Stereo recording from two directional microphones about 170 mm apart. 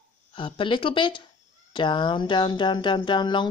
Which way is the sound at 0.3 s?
30° left (ahead or behind).